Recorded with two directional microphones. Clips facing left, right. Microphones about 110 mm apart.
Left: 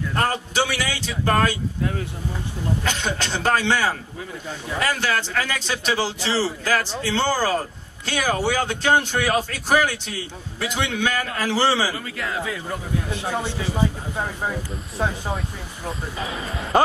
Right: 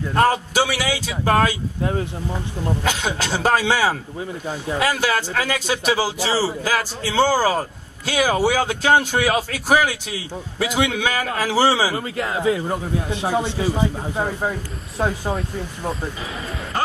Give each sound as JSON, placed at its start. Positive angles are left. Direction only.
{"t": 0.1, "sound": "a man's voice", "side_deg": -10}
{"t": 2.8, "sound": "a man's voice", "side_deg": -10}
{"t": 11.9, "sound": "speech", "side_deg": -25}
{"t": 16.2, "sound": "speech", "side_deg": 0}